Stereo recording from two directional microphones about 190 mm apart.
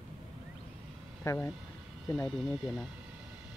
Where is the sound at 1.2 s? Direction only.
15° left (ahead or behind).